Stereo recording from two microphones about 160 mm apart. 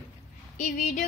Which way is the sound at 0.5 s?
50° left (ahead or behind).